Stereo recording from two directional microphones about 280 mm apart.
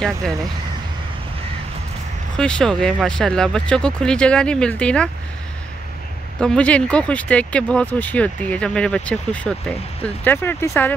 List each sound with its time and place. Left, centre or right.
0.0 s speech: centre
2.3 s speech: centre
6.4 s speech: centre